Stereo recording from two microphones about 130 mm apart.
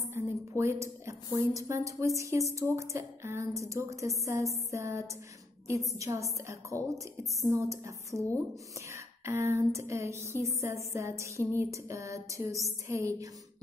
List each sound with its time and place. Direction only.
0.1 s speech: 20° right (ahead or behind)